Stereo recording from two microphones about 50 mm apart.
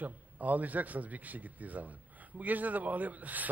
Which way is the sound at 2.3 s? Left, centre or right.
Right.